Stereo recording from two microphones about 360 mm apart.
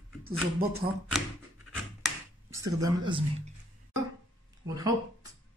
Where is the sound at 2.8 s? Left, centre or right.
Centre.